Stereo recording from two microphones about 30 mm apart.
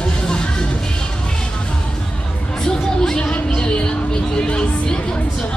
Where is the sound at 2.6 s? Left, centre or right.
Left.